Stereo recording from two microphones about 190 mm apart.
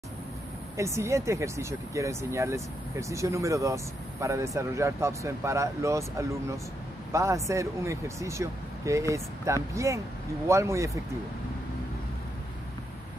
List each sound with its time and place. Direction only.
0.7 s speech: 15° right (ahead or behind)